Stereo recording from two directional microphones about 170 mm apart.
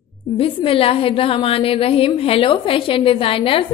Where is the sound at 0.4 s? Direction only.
30° left (ahead or behind).